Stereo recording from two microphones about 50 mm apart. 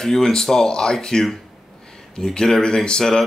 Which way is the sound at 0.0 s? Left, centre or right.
Centre.